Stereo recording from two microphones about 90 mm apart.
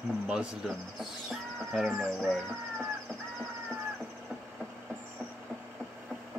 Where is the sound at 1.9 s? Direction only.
Centre (ahead or behind).